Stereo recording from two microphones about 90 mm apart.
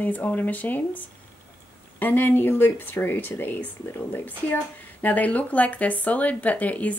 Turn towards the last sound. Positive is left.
turn(degrees=15)  # may be behind; listen again after turning